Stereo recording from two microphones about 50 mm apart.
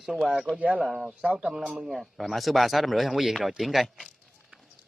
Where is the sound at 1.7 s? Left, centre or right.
Centre.